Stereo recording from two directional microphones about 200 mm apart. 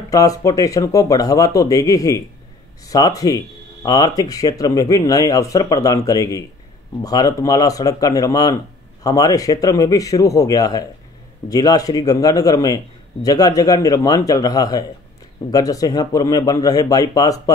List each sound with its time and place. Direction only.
0.1 s speech: 15° left (ahead or behind)